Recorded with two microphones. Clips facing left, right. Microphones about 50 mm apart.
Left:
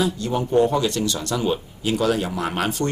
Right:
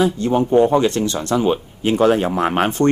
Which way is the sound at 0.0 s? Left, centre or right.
Right.